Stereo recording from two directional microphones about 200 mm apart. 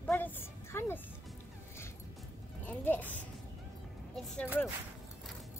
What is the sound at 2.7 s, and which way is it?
A woman's voice, 10° left (ahead or behind).